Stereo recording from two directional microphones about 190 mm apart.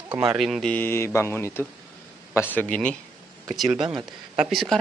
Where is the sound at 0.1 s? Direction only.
10° right (ahead or behind).